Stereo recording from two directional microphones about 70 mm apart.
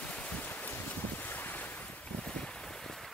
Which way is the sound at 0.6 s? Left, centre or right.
Left.